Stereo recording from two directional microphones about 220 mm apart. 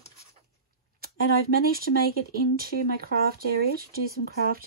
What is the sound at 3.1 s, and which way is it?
Speech, 40° right (ahead or behind).